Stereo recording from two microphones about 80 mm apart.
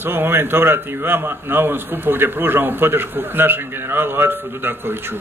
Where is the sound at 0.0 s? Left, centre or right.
Right.